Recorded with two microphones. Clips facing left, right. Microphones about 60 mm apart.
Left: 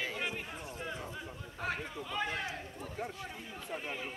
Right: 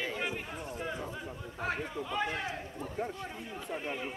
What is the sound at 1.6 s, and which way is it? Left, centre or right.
Speech, centre.